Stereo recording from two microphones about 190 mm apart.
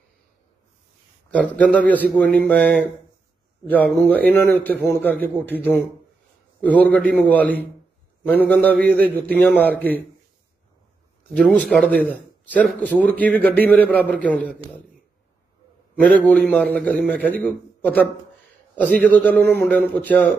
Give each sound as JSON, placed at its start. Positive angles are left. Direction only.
{"t": 1.6, "sound": "a man's voice", "side_deg": 5}
{"t": 11.3, "sound": "a man's voice", "side_deg": 5}
{"t": 16.0, "sound": "a man's voice", "side_deg": 5}
{"t": 18.8, "sound": "a man's voice", "side_deg": 5}